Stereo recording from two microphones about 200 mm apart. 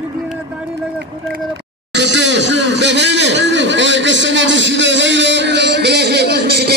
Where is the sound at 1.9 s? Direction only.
60° right (ahead or behind).